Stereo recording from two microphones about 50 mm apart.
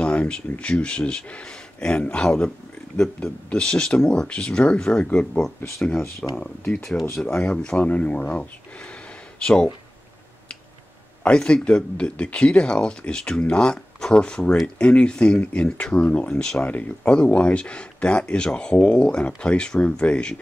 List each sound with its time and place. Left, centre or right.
0.0 s speech: left
6.8 s speech: centre
7.4 s speech: centre
9.4 s speech: centre
11.2 s speech: left
16.3 s speech: centre